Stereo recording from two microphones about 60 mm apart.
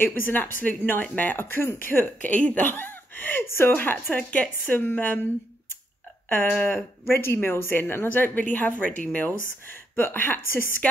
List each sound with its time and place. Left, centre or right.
0.0 s speech: left
1.4 s speech: left
2.2 s speech: left
2.7 s speech: left
3.4 s speech: left
3.7 s speech: left
4.2 s speech: left